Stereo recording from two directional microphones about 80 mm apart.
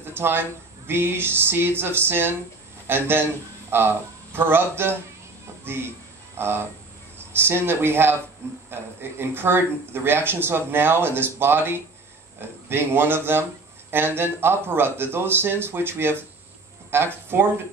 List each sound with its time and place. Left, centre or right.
0.0 s speech: right
9.2 s speech: right